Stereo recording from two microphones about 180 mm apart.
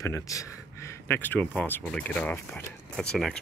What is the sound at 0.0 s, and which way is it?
Speech, 15° left (ahead or behind).